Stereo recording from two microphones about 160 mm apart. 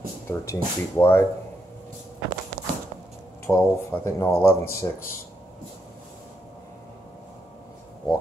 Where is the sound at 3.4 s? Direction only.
15° left (ahead or behind).